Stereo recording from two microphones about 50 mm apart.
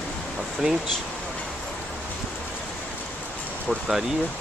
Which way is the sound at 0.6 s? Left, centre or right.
Right.